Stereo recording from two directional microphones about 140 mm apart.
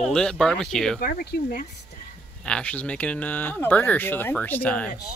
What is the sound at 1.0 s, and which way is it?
Speech, 90° left.